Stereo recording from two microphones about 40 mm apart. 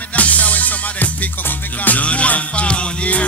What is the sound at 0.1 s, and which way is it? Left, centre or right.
Music, left.